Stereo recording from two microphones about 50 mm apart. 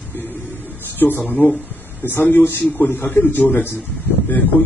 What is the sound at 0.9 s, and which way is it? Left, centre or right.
A man's voice, left.